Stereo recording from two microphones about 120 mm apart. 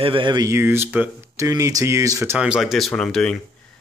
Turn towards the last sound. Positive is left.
turn(degrees=5)  # may be behind; listen again after turning